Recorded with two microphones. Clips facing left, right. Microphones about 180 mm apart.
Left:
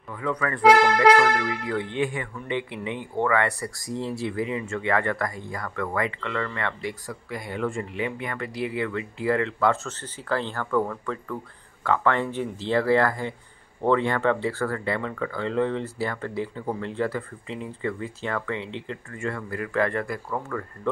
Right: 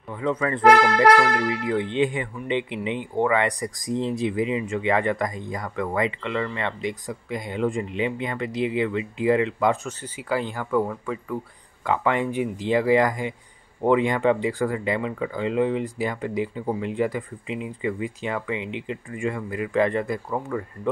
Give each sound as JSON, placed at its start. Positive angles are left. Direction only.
{"t": 0.1, "sound": "speech", "side_deg": -25}